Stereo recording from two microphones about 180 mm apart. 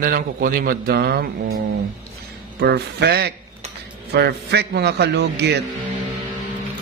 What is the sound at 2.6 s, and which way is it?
A man's voice, 65° right (ahead or behind).